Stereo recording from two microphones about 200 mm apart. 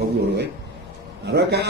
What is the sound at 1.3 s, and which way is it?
Speech, 55° right (ahead or behind).